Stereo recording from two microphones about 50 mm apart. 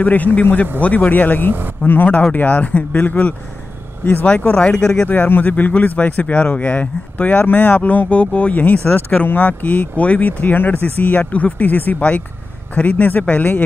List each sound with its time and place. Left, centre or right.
0.0 s speech: left
4.4 s speech: left
5.0 s speech: left